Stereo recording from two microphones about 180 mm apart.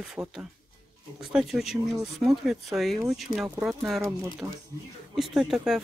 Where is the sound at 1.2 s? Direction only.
5° right (ahead or behind).